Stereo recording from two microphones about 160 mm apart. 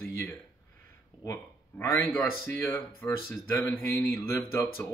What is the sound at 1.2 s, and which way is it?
Speech, 15° left (ahead or behind).